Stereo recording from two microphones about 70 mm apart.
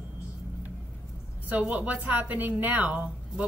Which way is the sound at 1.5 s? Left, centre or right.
Right.